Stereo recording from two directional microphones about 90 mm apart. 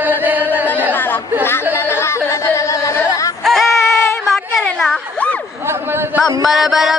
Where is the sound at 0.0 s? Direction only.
20° right (ahead or behind).